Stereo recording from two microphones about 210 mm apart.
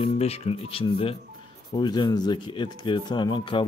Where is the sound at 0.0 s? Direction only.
30° left (ahead or behind).